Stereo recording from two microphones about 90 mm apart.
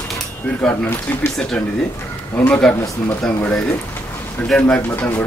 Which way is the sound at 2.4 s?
15° left (ahead or behind).